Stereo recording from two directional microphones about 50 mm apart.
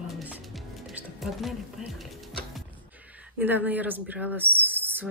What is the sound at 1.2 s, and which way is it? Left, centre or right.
Speech, centre.